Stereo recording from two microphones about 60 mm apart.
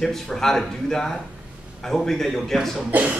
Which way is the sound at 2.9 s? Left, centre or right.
Right.